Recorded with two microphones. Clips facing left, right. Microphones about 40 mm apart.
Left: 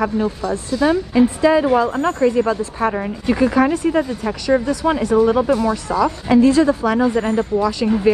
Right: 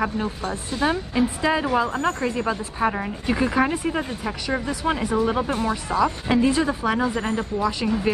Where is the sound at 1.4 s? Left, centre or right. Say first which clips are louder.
Left 8 dB; centre.